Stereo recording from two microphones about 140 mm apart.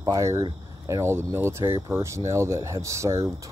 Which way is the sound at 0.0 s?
25° right (ahead or behind).